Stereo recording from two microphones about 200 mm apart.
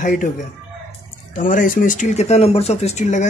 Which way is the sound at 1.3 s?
40° left (ahead or behind).